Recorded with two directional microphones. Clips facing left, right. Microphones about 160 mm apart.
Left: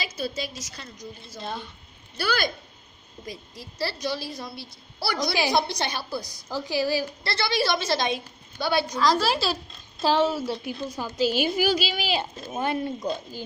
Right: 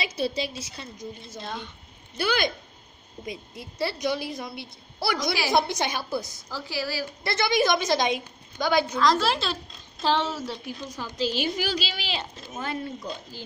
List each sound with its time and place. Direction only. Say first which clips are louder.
0.0 s a woman's voice: right 3 dB; 30° right (ahead or behind)
1.4 s a woman's voice: left 2 dB; 5° left (ahead or behind)
2.1 s a woman's voice: right 1 dB; 20° right (ahead or behind)
6.5 s a woman's voice: left 6 dB; 15° left (ahead or behind)
7.2 s a woman's voice: right 4 dB; 15° right (ahead or behind)
9.0 s a woman's voice: even; centre (ahead or behind)